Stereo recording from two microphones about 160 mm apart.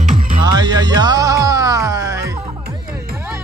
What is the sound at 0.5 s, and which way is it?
Music, 25° right (ahead or behind).